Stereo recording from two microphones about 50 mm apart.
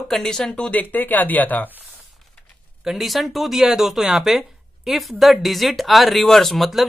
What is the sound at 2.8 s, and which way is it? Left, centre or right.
Speech, centre.